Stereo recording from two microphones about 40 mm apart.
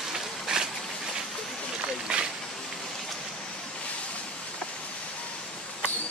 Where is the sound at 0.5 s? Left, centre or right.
Centre.